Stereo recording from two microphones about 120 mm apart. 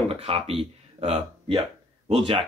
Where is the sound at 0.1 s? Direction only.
55° right (ahead or behind).